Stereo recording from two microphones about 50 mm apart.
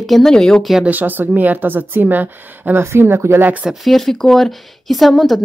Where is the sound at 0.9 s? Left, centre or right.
Right.